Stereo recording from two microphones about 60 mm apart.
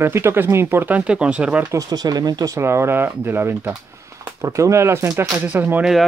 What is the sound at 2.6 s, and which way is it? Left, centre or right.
Speech, right.